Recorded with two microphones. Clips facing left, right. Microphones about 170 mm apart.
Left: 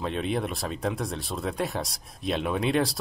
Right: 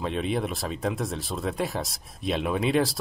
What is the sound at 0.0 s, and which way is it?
Speech, centre (ahead or behind).